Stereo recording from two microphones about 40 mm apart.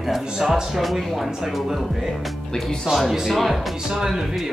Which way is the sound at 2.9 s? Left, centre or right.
Right.